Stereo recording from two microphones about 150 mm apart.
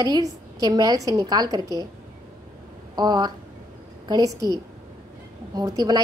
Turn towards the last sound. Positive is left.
turn(degrees=-25)  # may be behind; listen again after turning